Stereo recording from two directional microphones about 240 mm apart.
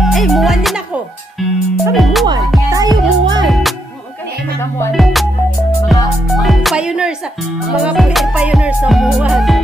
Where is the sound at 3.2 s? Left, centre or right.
Centre.